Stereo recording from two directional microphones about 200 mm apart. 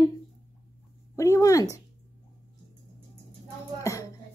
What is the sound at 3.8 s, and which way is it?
Music, 15° left (ahead or behind).